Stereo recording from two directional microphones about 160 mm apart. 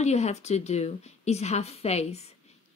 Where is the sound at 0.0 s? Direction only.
45° left (ahead or behind).